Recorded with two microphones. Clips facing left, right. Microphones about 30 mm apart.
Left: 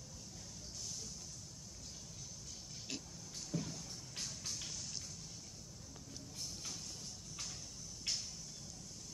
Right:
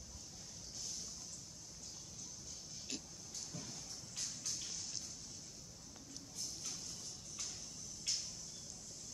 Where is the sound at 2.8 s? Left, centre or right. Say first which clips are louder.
Left 1 dB; centre.